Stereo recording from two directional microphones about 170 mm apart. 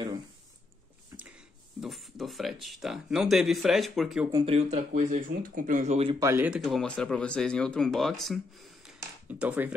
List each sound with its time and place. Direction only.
1.1 s a sound: 15° right (ahead or behind)
1.8 s speech: centre (ahead or behind)
4.5 s speech: 40° right (ahead or behind)
6.1 s speech: 15° right (ahead or behind)
6.6 s speech: 5° left (ahead or behind)